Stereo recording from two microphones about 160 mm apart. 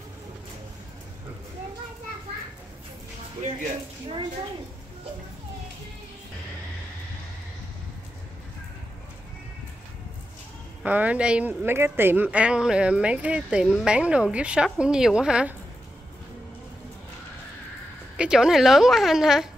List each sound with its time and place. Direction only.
3.4 s speech: 40° right (ahead or behind)
10.8 s speech: 10° right (ahead or behind)
18.1 s speech: 5° right (ahead or behind)